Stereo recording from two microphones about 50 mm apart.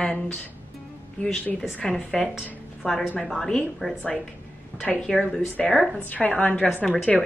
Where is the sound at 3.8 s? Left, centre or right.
Left.